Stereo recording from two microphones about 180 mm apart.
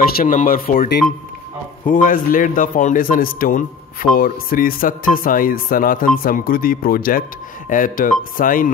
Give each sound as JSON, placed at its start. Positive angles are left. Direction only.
{"t": 0.0, "sound": "a man's voice", "side_deg": 55}